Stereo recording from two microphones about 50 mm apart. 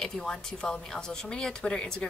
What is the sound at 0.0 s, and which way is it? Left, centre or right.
Speech, centre.